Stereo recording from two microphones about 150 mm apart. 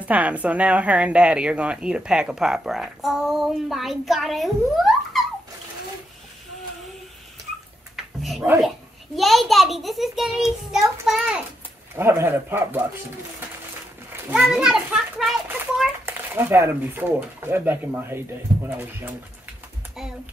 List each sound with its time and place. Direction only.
0.0 s a woman's voice: 10° right (ahead or behind)
7.9 s a sound: centre (ahead or behind)
8.5 s a woman's voice: centre (ahead or behind)
14.3 s a woman's voice: 5° right (ahead or behind)
15.4 s speech: 15° right (ahead or behind)